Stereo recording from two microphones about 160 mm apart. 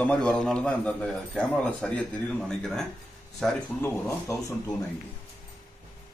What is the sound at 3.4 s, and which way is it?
Speech, 5° left (ahead or behind).